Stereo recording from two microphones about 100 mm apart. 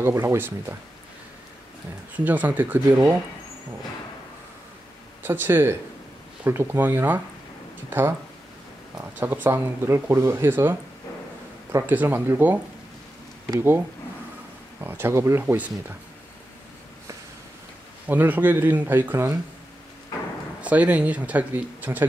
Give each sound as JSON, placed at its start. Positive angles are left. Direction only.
{"t": 0.0, "sound": "speech", "side_deg": -25}
{"t": 2.1, "sound": "speech", "side_deg": -15}
{"t": 5.2, "sound": "speech", "side_deg": -20}
{"t": 9.2, "sound": "speech", "side_deg": -20}
{"t": 13.6, "sound": "speech", "side_deg": -20}
{"t": 18.0, "sound": "speech", "side_deg": -15}
{"t": 20.6, "sound": "speech", "side_deg": -15}